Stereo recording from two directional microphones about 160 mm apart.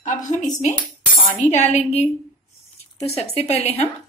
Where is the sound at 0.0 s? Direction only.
50° left (ahead or behind).